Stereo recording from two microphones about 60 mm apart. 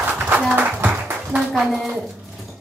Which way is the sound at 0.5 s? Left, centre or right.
Right.